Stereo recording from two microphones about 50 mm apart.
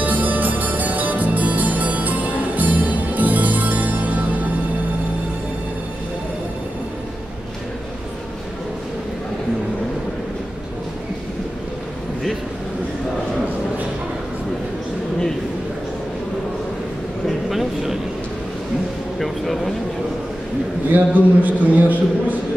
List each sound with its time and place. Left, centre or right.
0.0 s music: right
17.5 s vehicle: centre
19.1 s vehicle: centre
20.9 s a sound: right